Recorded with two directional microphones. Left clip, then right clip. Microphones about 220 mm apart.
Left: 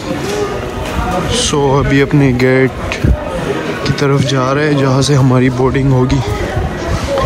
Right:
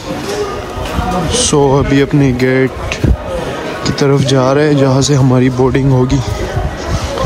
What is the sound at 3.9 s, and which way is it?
Speech, 20° right (ahead or behind).